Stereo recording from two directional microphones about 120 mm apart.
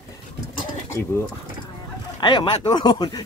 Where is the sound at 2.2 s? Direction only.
40° left (ahead or behind).